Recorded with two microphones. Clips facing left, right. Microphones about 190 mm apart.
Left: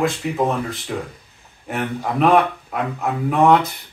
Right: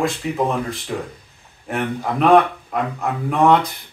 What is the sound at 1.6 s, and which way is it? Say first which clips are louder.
Speech: right 1 dB; centre (ahead or behind).